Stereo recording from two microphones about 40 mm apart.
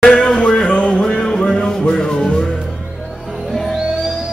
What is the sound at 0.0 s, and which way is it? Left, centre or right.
Music, centre.